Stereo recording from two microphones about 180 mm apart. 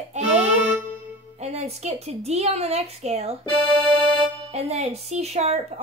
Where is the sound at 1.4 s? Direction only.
35° right (ahead or behind).